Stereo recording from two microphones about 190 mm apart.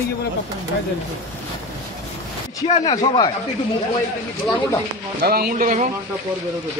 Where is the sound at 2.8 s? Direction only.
20° left (ahead or behind).